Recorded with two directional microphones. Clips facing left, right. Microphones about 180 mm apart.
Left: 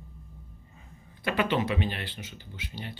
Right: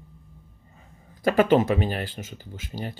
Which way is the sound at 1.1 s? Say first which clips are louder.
Right 9 dB; 45° right (ahead or behind).